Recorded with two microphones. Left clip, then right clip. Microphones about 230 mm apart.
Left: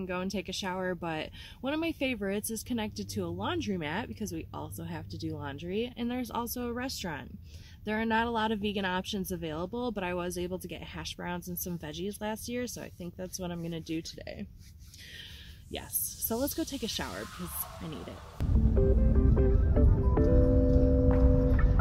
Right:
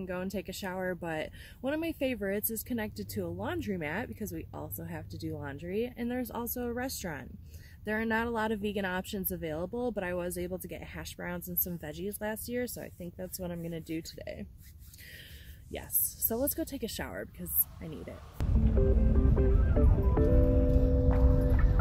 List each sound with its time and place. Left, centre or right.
0.0 s speech: centre
16.3 s speech: centre
18.4 s music: centre